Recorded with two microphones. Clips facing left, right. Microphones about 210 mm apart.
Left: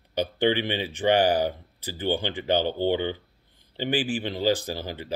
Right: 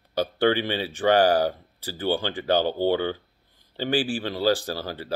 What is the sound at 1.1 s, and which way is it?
Speech, 40° right (ahead or behind).